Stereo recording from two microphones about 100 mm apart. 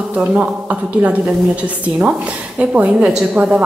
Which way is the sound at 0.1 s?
15° right (ahead or behind).